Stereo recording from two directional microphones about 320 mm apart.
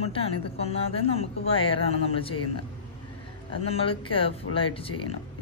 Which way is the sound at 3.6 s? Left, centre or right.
Centre.